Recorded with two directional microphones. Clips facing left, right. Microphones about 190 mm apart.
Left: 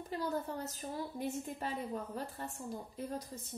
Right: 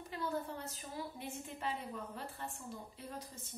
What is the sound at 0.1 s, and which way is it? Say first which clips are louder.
A woman's voice: left 3 dB; 40° left (ahead or behind).